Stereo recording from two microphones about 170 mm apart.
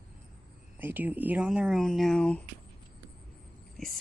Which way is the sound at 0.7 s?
10° right (ahead or behind).